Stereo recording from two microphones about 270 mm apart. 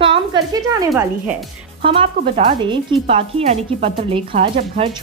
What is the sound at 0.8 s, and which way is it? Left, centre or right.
Speech, centre.